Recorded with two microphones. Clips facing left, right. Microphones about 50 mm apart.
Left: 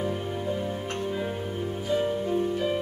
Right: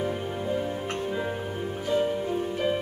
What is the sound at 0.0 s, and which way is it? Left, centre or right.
Music, centre.